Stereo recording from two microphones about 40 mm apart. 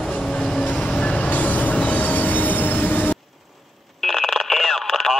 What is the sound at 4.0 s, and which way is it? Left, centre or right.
Radio, centre.